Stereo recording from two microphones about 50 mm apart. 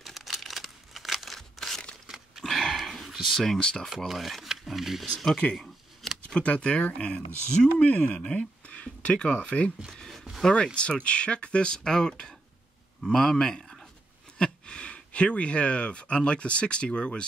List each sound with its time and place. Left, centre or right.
0.0 s crumpling: centre
1.6 s crumpling: centre
2.0 s a sound: centre
2.4 s dog: centre
3.3 s speech: centre
6.2 s speech: left
14.4 s speech: left